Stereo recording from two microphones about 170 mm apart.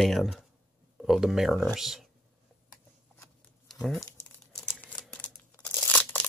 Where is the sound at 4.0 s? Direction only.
15° left (ahead or behind).